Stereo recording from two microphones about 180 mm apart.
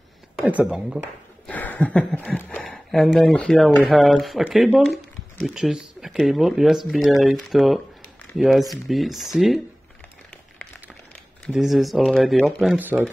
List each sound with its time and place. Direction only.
0.4 s speech: 5° right (ahead or behind)
1.5 s speech: 10° left (ahead or behind)
11.4 s speech: centre (ahead or behind)